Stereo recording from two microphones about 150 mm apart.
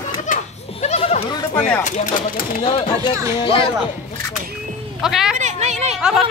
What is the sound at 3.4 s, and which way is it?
Speech, 35° left (ahead or behind).